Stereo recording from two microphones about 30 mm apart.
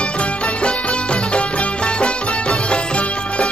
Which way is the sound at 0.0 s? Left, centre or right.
Left.